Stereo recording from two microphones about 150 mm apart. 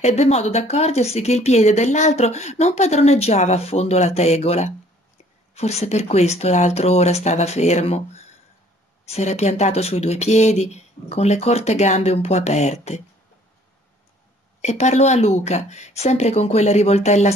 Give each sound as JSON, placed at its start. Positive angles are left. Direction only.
{"t": 0.0, "sound": "speech", "side_deg": 45}
{"t": 9.0, "sound": "speech", "side_deg": 45}
{"t": 14.6, "sound": "speech", "side_deg": 50}